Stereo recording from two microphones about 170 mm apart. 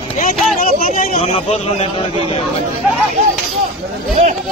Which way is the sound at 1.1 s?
40° left (ahead or behind).